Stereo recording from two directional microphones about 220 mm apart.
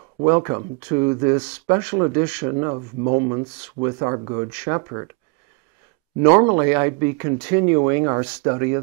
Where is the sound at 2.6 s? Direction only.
30° right (ahead or behind).